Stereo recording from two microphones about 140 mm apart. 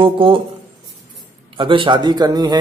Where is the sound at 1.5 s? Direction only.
35° right (ahead or behind).